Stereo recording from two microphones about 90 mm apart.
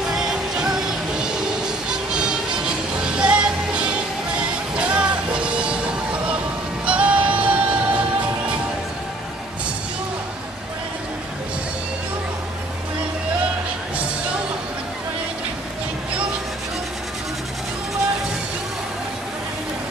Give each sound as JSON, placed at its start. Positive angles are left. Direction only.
{"t": 0.1, "sound": "music", "side_deg": -5}
{"t": 1.9, "sound": "music", "side_deg": -10}